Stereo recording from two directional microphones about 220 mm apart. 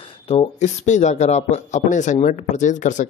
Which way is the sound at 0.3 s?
30° left (ahead or behind).